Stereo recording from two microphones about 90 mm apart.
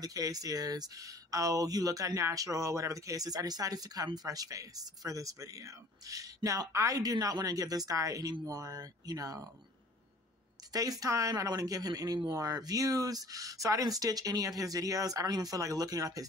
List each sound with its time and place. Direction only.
0.0 s speech: 40° right (ahead or behind)
10.7 s speech: 40° right (ahead or behind)